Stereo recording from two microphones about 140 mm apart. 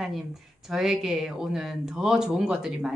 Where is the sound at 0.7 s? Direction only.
5° right (ahead or behind).